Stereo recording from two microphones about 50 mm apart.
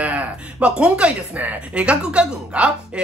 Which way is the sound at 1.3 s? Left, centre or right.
Right.